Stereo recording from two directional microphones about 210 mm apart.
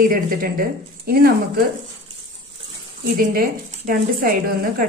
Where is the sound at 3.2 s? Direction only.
40° right (ahead or behind).